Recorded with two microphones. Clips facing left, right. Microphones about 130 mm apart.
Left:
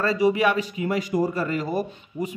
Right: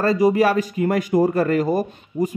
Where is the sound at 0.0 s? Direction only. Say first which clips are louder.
Right 4 dB; 40° right (ahead or behind).